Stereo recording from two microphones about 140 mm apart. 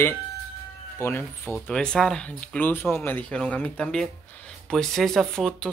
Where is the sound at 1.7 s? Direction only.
5° left (ahead or behind).